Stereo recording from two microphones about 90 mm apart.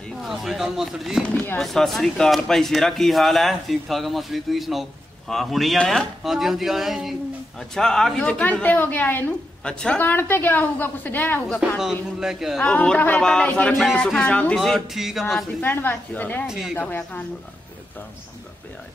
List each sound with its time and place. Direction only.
0.2 s a woman's voice: centre (ahead or behind); by 9.3 s 20° left (ahead or behind)
9.7 s a woman's voice: 10° left (ahead or behind)
10.0 s a woman's voice: 25° left (ahead or behind)
12.2 s speech: 5° right (ahead or behind)
12.5 s a woman's voice: 10° left (ahead or behind)
14.6 s speech: centre (ahead or behind)
15.6 s a woman's voice: 25° left (ahead or behind)
16.4 s speech: 5° right (ahead or behind)
16.7 s a woman's voice: 15° left (ahead or behind)